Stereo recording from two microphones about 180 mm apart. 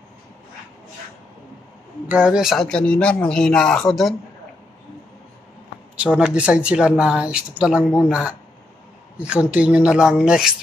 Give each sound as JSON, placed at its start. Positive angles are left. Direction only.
{"t": 2.0, "sound": "speech", "side_deg": -5}
{"t": 5.9, "sound": "speech", "side_deg": -5}
{"t": 9.2, "sound": "speech", "side_deg": -5}